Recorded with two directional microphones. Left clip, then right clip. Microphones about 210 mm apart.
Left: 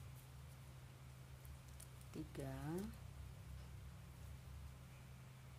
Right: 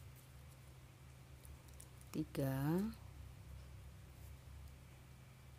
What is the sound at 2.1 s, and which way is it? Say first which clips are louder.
Speech: right 9 dB; 50° right (ahead or behind).